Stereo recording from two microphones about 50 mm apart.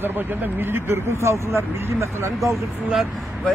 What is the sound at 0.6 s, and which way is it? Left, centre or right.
Speech, right.